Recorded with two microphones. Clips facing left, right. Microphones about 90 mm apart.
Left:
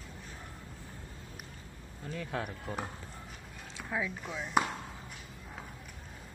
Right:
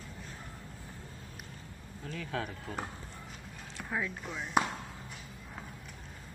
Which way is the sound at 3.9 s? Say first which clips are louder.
Left 1 dB; centre (ahead or behind).